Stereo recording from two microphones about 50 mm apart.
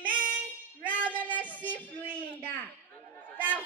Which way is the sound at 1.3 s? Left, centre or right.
Left.